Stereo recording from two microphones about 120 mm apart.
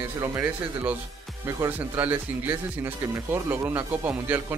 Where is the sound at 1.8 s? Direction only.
15° right (ahead or behind).